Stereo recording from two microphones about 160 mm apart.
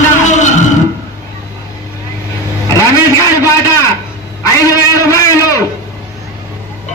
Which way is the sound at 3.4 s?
20° left (ahead or behind).